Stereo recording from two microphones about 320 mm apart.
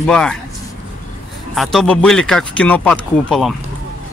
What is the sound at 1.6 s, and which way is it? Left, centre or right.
A man's voice, centre.